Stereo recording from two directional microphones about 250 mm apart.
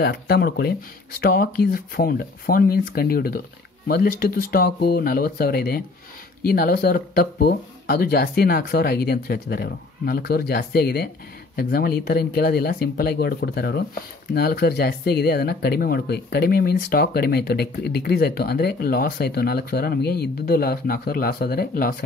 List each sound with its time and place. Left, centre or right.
0.0 s speech: left